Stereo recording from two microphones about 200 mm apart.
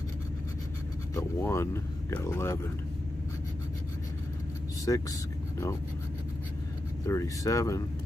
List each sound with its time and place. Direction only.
1.1 s speech: 15° left (ahead or behind)
4.9 s speech: 15° left (ahead or behind)
7.1 s speech: 15° left (ahead or behind)